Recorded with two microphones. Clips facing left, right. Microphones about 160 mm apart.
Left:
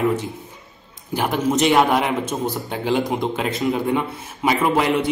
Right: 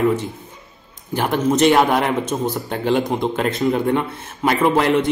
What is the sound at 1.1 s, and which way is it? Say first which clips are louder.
A man's voice: right 2 dB; centre (ahead or behind).